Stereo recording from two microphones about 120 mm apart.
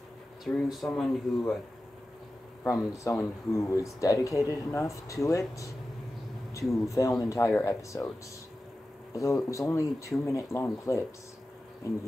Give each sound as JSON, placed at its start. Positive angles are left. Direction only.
{"t": 0.5, "sound": "speech", "side_deg": 0}
{"t": 2.6, "sound": "speech", "side_deg": 25}
{"t": 6.7, "sound": "speech", "side_deg": 25}
{"t": 9.1, "sound": "speech", "side_deg": 25}